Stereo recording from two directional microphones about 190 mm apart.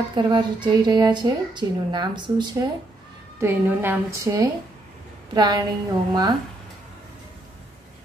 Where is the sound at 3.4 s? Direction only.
10° right (ahead or behind).